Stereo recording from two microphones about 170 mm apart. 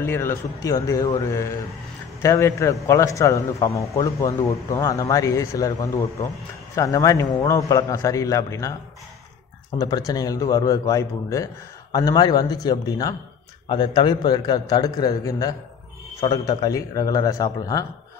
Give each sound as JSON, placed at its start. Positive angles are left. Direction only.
{"t": 0.0, "sound": "a man's voice", "side_deg": 15}
{"t": 9.8, "sound": "a man's voice", "side_deg": 25}